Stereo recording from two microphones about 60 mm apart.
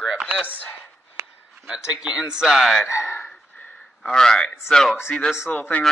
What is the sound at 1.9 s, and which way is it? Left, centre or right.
Speech, centre.